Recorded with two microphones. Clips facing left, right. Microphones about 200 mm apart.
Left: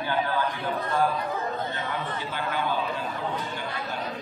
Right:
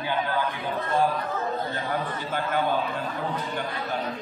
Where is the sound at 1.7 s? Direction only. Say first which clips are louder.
Right 2 dB; 45° right (ahead or behind).